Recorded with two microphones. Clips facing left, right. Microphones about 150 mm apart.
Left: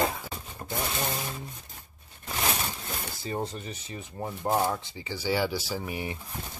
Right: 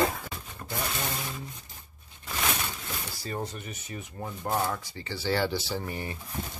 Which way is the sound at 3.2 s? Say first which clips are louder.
Left 3 dB; 25° left (ahead or behind).